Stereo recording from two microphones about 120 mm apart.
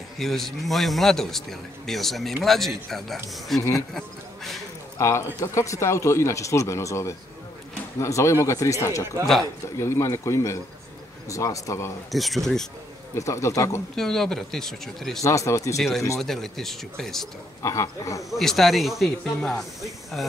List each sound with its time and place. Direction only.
0.2 s a man's voice: centre (ahead or behind)
4.9 s speech: 25° left (ahead or behind)
9.2 s a man's voice: centre (ahead or behind)
9.8 s speech: 25° left (ahead or behind)
12.1 s a man's voice: centre (ahead or behind)
13.1 s speech: 25° left (ahead or behind)
13.9 s a man's voice: 5° left (ahead or behind)
15.2 s speech: 25° left (ahead or behind)
16.2 s a man's voice: centre (ahead or behind)
17.6 s speech: 25° left (ahead or behind)
18.4 s a man's voice: centre (ahead or behind)